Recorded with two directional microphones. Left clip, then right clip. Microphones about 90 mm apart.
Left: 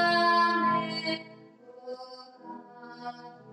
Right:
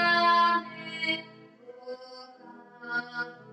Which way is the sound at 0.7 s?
35° left (ahead or behind).